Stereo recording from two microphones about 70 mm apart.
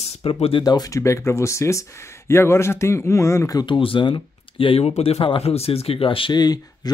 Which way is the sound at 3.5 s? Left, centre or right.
Left.